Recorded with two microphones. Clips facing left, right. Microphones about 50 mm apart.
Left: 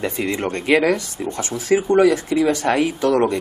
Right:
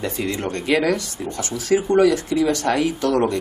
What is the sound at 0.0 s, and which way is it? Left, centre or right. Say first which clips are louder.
Speech: left 2 dB; left.